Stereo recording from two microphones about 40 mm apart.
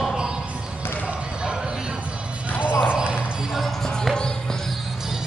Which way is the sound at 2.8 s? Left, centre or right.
Right.